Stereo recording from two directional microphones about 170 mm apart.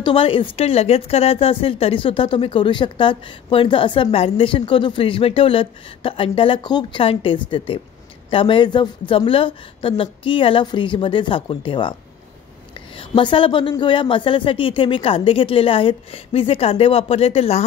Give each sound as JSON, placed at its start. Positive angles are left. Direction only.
{"t": 0.0, "sound": "a woman's voice", "side_deg": 30}
{"t": 12.9, "sound": "a woman's voice", "side_deg": 30}